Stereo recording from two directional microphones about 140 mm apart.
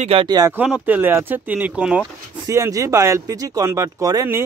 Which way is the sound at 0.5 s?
10° right (ahead or behind).